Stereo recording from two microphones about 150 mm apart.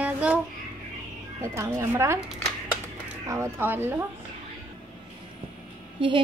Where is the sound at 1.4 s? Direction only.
20° right (ahead or behind).